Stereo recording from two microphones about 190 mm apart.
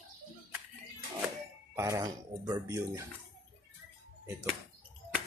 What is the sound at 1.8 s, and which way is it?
Speech, 15° right (ahead or behind).